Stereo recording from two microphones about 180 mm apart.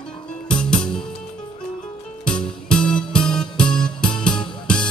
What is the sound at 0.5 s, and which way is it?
Music, 5° left (ahead or behind).